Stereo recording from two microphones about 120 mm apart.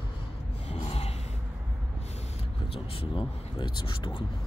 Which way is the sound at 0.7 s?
60° left (ahead or behind).